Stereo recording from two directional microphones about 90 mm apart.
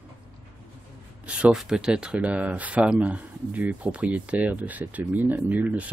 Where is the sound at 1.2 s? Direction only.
15° right (ahead or behind).